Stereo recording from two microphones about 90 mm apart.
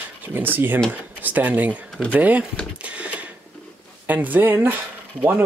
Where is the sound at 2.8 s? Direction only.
15° right (ahead or behind).